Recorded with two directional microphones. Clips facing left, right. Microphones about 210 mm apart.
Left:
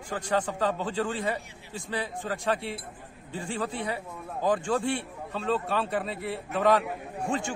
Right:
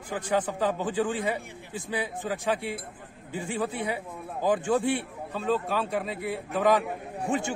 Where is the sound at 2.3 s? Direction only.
Centre (ahead or behind).